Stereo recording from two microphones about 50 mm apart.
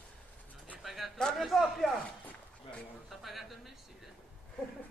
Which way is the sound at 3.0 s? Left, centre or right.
Centre.